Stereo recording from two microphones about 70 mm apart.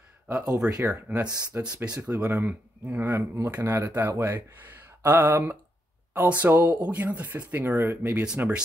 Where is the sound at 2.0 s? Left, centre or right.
Right.